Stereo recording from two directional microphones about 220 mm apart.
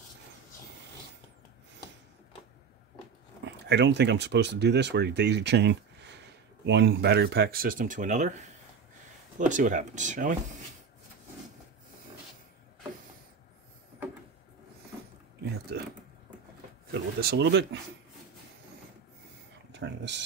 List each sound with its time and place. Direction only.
3.6 s speech: 50° right (ahead or behind); by 10.3 s 35° right (ahead or behind)
16.9 s speech: 50° right (ahead or behind)
19.7 s a sound: 55° right (ahead or behind)